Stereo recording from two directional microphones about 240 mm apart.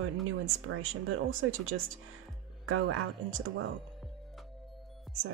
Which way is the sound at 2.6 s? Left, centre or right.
Right.